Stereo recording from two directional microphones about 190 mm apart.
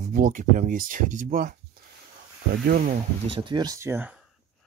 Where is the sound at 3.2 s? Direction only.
25° right (ahead or behind).